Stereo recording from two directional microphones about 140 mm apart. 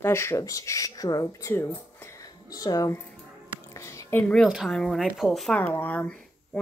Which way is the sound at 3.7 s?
20° left (ahead or behind).